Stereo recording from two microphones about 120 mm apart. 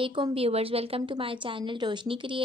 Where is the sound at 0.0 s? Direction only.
45° right (ahead or behind).